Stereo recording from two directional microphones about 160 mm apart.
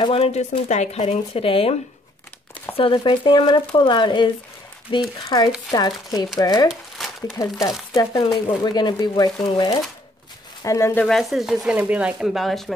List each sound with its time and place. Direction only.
0.0 s speech: 40° left (ahead or behind)
6.7 s a sound: centre (ahead or behind)
7.5 s speech: centre (ahead or behind)
7.9 s speech: 20° left (ahead or behind)
11.1 s speech: centre (ahead or behind)